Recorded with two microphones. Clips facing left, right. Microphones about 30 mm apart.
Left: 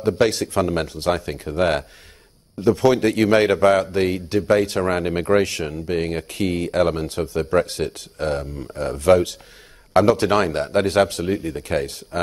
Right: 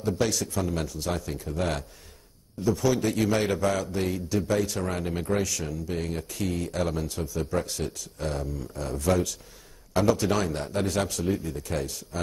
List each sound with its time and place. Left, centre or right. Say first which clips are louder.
0.0 s speech: left 8 dB; left